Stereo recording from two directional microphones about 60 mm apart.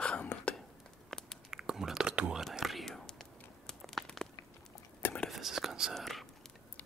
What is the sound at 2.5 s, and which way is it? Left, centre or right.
Whispering, centre.